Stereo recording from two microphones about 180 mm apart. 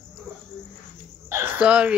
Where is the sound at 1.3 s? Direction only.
10° right (ahead or behind).